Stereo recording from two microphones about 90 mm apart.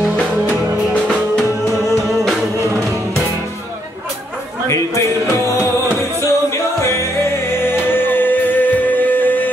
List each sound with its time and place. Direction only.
4.6 s music: 35° left (ahead or behind)